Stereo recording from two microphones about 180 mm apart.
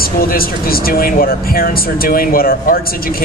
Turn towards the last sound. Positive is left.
turn(degrees=55)  # may be behind; listen again after turning